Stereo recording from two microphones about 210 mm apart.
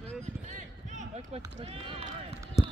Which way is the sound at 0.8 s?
35° right (ahead or behind).